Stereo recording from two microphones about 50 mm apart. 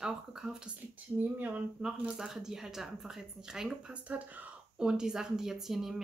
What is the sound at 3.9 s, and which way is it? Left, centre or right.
Speech, right.